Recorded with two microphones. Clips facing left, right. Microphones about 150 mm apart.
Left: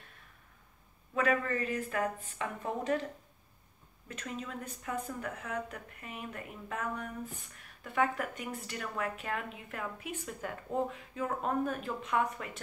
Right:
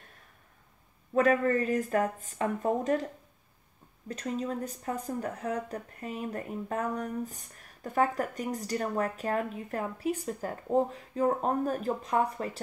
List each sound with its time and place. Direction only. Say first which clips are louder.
1.1 s speech: right 6 dB; 40° right (ahead or behind)
4.1 s speech: right 8 dB; 35° right (ahead or behind)